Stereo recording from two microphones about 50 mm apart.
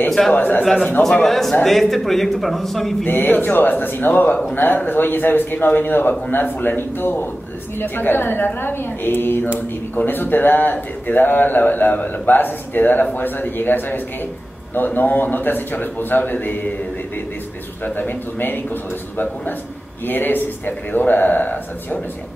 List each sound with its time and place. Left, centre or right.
0.3 s speech: left
1.2 s a man's voice: centre
3.1 s a woman's voice: left
17.8 s speech: left